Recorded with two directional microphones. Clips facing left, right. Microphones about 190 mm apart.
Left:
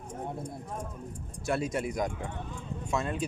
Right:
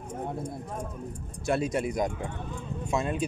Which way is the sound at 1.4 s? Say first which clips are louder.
Right 3 dB; 20° right (ahead or behind).